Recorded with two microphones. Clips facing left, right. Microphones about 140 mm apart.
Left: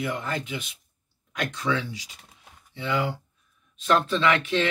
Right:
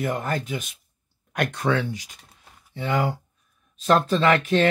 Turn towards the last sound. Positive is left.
turn(degrees=-45)  # may be behind; listen again after turning